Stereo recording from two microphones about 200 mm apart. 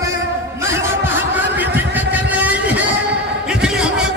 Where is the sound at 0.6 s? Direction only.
15° right (ahead or behind).